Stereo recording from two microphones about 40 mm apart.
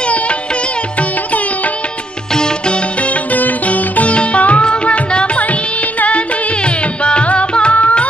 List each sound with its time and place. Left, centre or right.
2.3 s music: centre
3.0 s sitar: left